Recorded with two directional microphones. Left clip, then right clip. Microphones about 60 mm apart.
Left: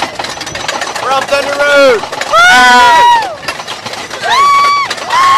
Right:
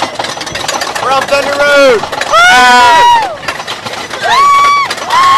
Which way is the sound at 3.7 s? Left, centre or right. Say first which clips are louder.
Right 2 dB; centre.